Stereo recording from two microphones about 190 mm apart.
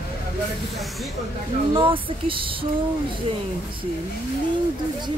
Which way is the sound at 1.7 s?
25° right (ahead or behind).